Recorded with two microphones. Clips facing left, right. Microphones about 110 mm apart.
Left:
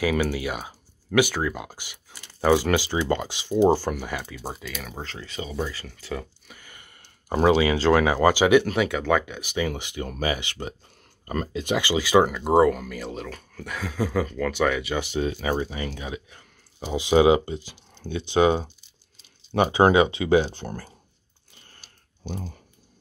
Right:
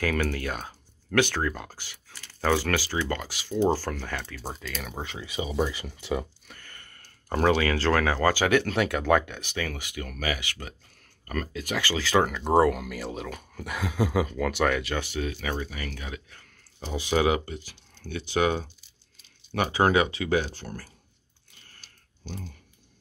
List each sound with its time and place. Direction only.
0.0 s speech: 10° left (ahead or behind)
4.9 s speech: 15° right (ahead or behind)
6.4 s speech: 10° left (ahead or behind)
15.0 s speech: 20° left (ahead or behind)
21.7 s a sound: 20° left (ahead or behind)